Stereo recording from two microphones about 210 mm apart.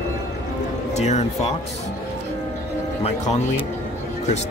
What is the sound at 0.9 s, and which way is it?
Speech, 30° left (ahead or behind).